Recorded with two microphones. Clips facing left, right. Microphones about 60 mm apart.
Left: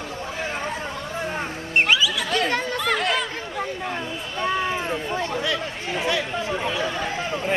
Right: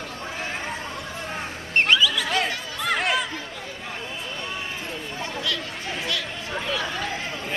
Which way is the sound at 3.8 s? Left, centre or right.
Left.